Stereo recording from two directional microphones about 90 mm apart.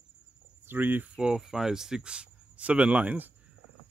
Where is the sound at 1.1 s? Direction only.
5° right (ahead or behind).